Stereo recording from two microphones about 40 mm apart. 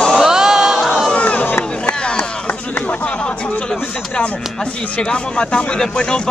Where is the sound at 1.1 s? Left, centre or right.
Left.